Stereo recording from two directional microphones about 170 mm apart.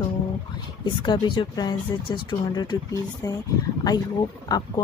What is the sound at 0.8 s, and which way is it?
Speech, 25° left (ahead or behind).